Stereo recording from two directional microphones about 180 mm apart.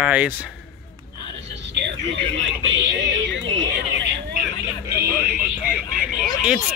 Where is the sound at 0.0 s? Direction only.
5° right (ahead or behind).